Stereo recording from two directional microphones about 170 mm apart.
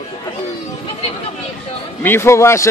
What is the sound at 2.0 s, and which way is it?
Speech, 15° left (ahead or behind).